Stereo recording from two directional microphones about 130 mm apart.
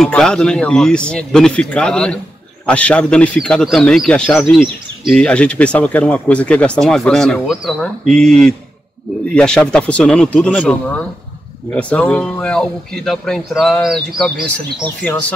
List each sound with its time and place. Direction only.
0.0 s speech: 5° left (ahead or behind)